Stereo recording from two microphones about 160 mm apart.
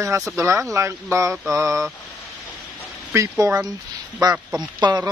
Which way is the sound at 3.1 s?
20° right (ahead or behind).